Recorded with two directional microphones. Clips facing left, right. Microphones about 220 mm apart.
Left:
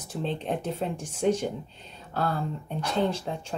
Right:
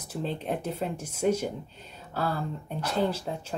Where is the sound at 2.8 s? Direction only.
5° right (ahead or behind).